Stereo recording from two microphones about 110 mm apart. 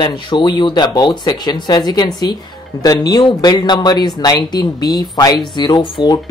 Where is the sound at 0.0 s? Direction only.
45° left (ahead or behind).